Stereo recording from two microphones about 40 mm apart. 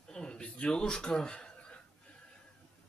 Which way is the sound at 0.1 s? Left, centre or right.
Left.